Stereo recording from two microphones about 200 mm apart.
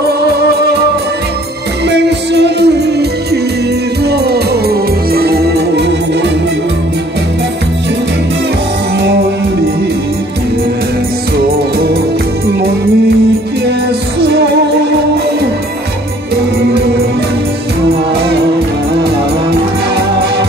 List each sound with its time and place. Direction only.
1.9 s music: 60° right (ahead or behind)